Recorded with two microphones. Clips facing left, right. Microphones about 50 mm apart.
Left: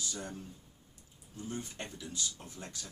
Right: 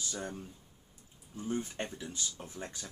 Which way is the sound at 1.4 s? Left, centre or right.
Right.